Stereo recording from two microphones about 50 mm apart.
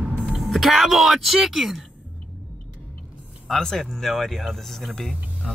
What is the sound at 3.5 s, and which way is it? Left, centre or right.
Speech, centre.